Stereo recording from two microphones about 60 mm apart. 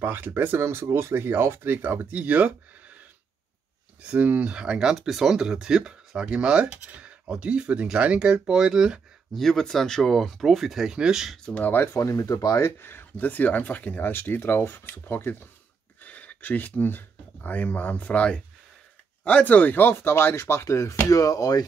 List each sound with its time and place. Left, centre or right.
0.0 s speech: right
4.0 s speech: right; by 9.0 s centre
9.3 s speech: centre
11.4 s speech: left
11.9 s speech: left
12.5 s speech: left
13.1 s speech: left
16.0 s speech: left
21.1 s speech: left